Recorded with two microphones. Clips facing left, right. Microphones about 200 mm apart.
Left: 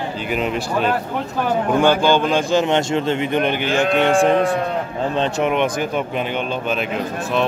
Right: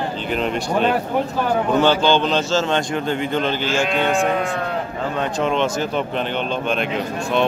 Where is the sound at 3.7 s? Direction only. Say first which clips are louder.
Left 3 dB; 60° left (ahead or behind).